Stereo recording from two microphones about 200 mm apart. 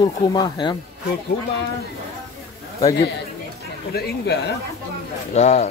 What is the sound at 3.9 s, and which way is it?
Speech, 55° left (ahead or behind).